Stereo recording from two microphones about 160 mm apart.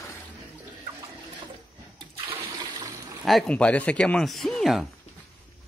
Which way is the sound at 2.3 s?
25° right (ahead or behind).